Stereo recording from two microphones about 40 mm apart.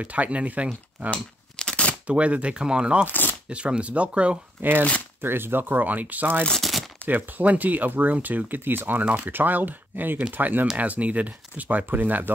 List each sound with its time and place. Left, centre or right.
0.0 s speech: right
1.1 s a sound: left
2.0 s speech: right
3.1 s speech: left
3.4 s speech: right
4.6 s speech: right
6.6 s crumpling: centre
7.1 s speech: right
9.0 s speech: right
9.3 s speech: right
10.8 s speech: right